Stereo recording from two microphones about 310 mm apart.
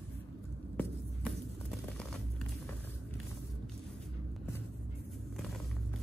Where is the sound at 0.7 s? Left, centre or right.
Centre.